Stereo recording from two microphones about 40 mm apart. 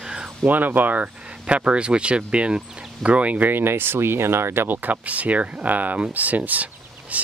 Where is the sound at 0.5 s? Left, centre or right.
Right.